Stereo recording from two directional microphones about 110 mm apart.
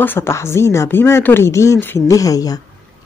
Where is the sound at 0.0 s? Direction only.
20° left (ahead or behind).